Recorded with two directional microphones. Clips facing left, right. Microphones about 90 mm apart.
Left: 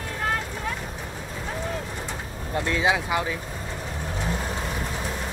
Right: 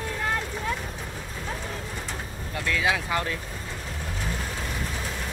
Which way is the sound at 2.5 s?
25° left (ahead or behind).